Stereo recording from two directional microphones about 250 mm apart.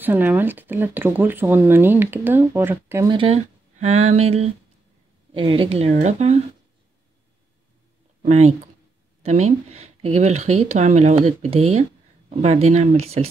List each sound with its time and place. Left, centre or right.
0.0 s speech: centre; by 6.4 s right
8.2 s speech: right